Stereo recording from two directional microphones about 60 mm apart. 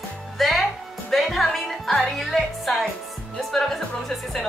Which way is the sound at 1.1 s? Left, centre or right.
Centre.